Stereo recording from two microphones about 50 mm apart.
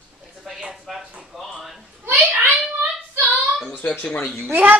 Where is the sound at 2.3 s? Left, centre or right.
Right.